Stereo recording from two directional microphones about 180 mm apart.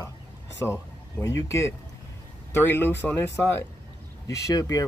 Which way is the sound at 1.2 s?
15° left (ahead or behind).